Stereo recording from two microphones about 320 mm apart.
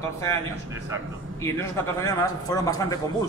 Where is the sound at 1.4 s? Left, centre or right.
Centre.